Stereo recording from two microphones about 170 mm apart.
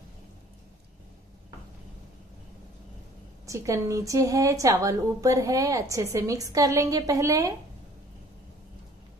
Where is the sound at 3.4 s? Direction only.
20° right (ahead or behind).